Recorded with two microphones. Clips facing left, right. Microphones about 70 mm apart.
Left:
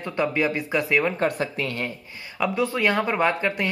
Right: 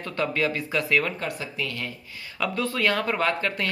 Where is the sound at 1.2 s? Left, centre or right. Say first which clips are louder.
Left 7 dB; left.